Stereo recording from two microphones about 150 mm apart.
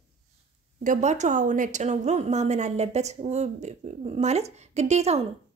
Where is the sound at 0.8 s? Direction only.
50° right (ahead or behind).